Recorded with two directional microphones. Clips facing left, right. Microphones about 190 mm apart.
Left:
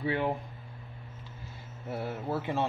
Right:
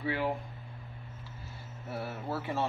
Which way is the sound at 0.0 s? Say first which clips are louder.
Left 2 dB; 25° left (ahead or behind).